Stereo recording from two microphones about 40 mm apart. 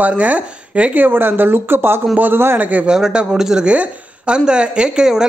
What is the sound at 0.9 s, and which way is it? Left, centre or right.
Speech, right.